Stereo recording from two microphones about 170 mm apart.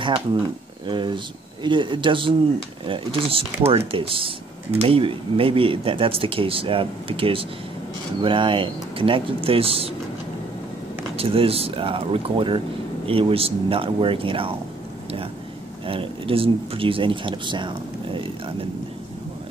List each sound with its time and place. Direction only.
0.8 s speech: 30° right (ahead or behind)
11.1 s speech: 35° right (ahead or behind)
15.9 s speech: 30° right (ahead or behind)